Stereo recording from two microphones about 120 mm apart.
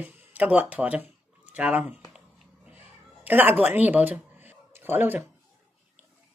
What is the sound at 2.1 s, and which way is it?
Cat, 10° right (ahead or behind).